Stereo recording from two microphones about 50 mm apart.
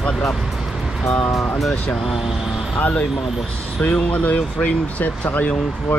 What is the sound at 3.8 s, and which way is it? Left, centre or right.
Speech, left.